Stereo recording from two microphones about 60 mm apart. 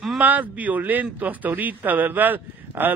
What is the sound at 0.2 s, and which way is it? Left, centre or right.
A man's voice, right.